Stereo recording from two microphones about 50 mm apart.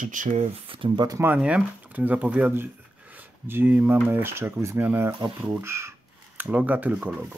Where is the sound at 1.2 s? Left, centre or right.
Right.